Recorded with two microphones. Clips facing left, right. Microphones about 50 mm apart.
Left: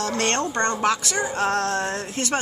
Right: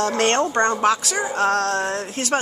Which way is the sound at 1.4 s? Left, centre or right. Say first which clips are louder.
Right 4 dB; left.